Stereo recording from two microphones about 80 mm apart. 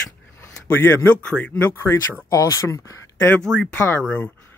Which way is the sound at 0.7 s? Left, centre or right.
Left.